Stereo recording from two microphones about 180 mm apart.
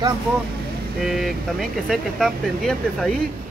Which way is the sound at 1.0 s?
Centre (ahead or behind).